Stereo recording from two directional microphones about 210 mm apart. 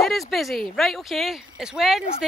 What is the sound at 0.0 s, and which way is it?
Speech, centre (ahead or behind).